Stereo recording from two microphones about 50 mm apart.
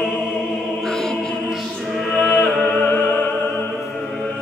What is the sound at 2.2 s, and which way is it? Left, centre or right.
Music, left.